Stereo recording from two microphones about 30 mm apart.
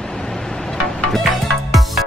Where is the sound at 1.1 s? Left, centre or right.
Centre.